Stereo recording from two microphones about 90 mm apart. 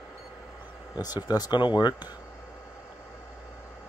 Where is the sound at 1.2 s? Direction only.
45° left (ahead or behind).